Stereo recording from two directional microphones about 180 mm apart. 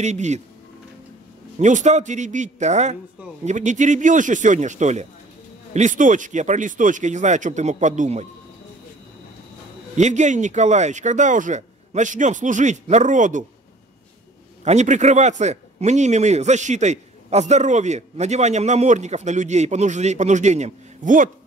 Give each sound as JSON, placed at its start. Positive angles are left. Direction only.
{"t": 0.0, "sound": "a man's voice", "side_deg": -40}
{"t": 1.6, "sound": "a man's voice", "side_deg": -40}
{"t": 9.9, "sound": "speech", "side_deg": -40}
{"t": 14.6, "sound": "a man's voice", "side_deg": -40}